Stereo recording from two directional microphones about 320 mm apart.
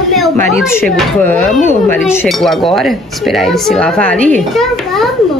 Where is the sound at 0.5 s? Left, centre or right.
Centre.